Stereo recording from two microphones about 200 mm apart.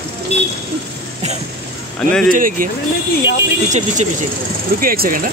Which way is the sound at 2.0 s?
5° left (ahead or behind).